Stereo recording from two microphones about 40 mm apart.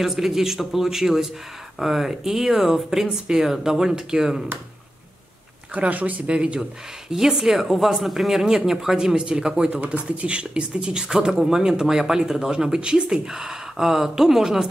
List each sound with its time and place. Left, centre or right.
0.0 s speech: centre
5.8 s speech: right
6.2 s speech: right
6.6 s speech: centre; by 9.8 s right
9.8 s speech: right
10.0 s speech: right; by 14.7 s centre